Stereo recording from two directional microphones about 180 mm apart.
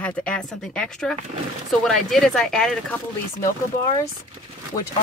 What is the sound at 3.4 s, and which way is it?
Speech, 15° left (ahead or behind).